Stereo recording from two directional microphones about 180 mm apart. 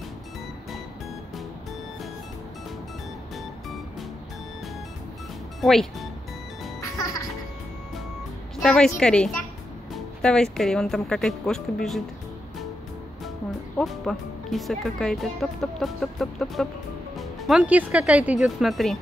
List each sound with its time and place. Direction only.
5.6 s speech: centre (ahead or behind)
6.8 s music: 20° left (ahead or behind)
8.5 s speech: 5° left (ahead or behind)
13.7 s speech: centre (ahead or behind)